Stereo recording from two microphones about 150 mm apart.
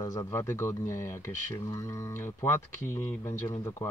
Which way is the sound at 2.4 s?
15° left (ahead or behind).